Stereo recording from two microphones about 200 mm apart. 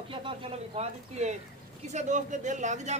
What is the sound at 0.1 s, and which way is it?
A woman's voice, 25° right (ahead or behind).